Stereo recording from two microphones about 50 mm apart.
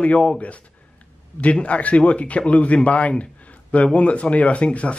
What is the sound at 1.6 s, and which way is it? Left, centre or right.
Speech, left.